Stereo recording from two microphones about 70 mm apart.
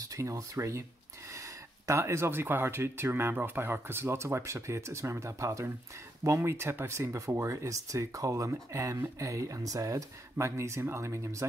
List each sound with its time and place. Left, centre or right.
0.0 s speech: right